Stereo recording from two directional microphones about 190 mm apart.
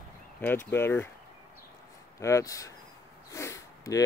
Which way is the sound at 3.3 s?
15° left (ahead or behind).